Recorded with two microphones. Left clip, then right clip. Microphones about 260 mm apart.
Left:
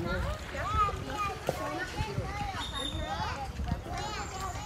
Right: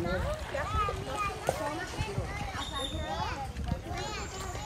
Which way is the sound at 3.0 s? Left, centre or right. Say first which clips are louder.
Even; left.